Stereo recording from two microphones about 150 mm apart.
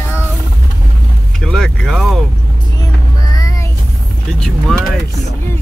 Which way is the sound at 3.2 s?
20° left (ahead or behind).